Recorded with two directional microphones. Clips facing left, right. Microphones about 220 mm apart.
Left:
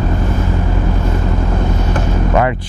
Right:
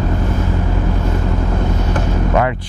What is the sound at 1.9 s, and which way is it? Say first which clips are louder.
Vehicle: left 1 dB; 15° left (ahead or behind).